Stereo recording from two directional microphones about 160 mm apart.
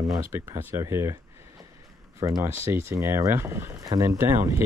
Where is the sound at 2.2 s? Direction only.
20° right (ahead or behind).